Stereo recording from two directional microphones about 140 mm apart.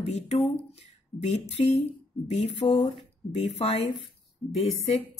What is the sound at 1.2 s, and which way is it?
Speech, 50° left (ahead or behind).